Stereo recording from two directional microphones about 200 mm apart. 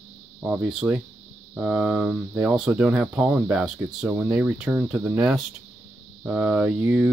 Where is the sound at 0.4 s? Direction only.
5° right (ahead or behind).